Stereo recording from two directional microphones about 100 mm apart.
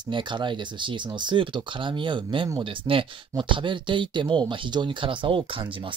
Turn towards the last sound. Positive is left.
turn(degrees=-60)  # may be behind; listen again after turning